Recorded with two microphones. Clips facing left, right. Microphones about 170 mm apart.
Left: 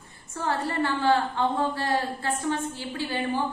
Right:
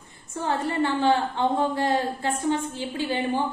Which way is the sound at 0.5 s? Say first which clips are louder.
Right 2 dB; 20° right (ahead or behind).